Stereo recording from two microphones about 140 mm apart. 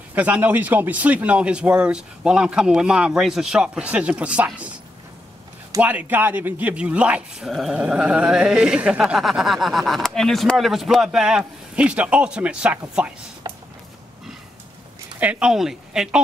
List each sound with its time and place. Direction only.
0.1 s a man's voice: 10° right (ahead or behind)
5.8 s speech: 10° right (ahead or behind)
13.4 s a sound: 25° right (ahead or behind)
15.1 s speech: 10° right (ahead or behind)